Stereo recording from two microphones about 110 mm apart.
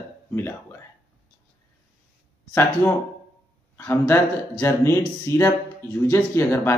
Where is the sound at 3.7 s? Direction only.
25° left (ahead or behind).